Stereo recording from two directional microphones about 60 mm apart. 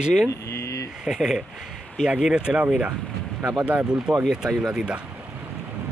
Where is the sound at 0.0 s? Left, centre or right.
Centre.